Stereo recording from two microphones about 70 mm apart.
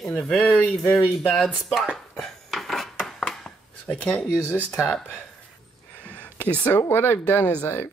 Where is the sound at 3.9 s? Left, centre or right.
Centre.